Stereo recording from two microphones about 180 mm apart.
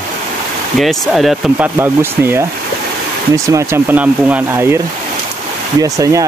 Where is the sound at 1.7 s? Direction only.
10° right (ahead or behind).